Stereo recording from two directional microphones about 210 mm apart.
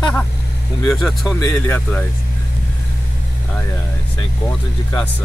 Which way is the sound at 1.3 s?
10° left (ahead or behind).